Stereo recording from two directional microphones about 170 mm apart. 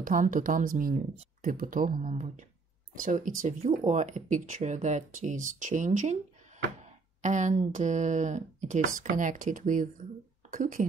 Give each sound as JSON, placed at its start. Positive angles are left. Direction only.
{"t": 0.0, "sound": "speech", "side_deg": -50}